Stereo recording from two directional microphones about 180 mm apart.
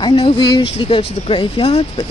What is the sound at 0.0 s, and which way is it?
Speech, 30° left (ahead or behind).